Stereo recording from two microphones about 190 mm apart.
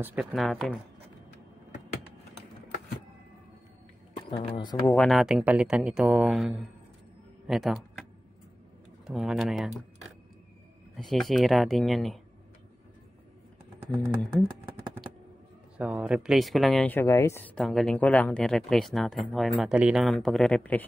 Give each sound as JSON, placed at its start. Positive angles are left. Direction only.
{"t": 0.0, "sound": "speech", "side_deg": -5}
{"t": 4.3, "sound": "speech", "side_deg": 25}
{"t": 4.9, "sound": "speech", "side_deg": 0}
{"t": 9.0, "sound": "speech", "side_deg": 0}
{"t": 11.0, "sound": "speech", "side_deg": 0}
{"t": 15.8, "sound": "speech", "side_deg": -5}